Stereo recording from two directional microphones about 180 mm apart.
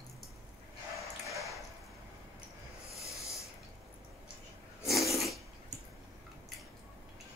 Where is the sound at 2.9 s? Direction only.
15° left (ahead or behind).